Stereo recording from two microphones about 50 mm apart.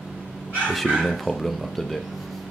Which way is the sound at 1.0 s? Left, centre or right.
Centre.